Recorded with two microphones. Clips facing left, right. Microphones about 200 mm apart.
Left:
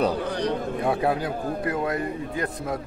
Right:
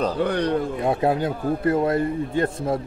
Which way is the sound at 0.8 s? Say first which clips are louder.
Right 1 dB; 25° right (ahead or behind).